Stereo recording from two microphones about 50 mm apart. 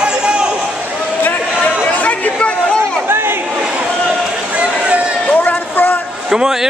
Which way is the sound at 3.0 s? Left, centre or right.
Right.